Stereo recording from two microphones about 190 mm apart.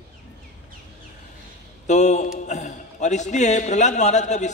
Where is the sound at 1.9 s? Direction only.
40° left (ahead or behind).